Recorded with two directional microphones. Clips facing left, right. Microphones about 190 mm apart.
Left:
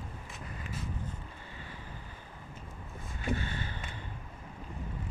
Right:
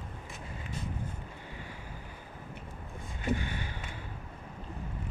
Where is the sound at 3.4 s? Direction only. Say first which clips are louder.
Even; 15° right (ahead or behind).